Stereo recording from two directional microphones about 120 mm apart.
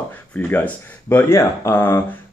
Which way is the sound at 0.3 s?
15° left (ahead or behind).